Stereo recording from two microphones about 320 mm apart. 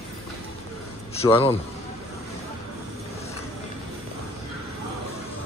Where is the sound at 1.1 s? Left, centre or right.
Centre.